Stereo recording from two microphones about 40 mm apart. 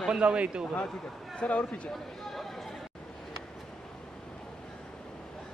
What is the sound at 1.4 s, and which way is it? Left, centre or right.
Speech, left.